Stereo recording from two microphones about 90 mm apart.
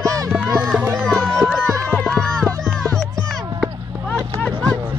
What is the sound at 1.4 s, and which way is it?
Music, 5° left (ahead or behind).